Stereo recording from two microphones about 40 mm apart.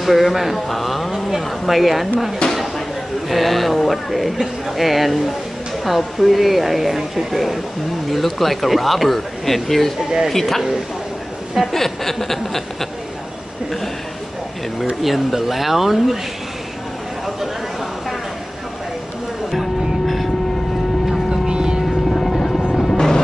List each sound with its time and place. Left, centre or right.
0.0 s speech: centre
2.4 s a sound: left
3.3 s speech: centre
10.3 s a sound: centre
11.7 s a sound: centre
15.0 s speech: centre
19.5 s music: centre
21.3 s vehicle: centre
22.1 s helicopter: centre
22.8 s music: centre